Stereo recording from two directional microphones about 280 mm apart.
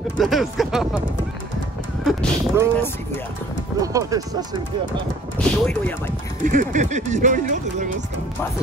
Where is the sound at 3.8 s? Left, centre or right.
Centre.